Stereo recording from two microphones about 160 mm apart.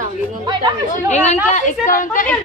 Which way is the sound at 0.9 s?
45° left (ahead or behind).